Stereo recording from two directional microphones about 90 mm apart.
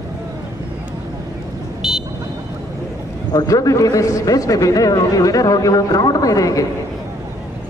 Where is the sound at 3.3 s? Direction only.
40° left (ahead or behind).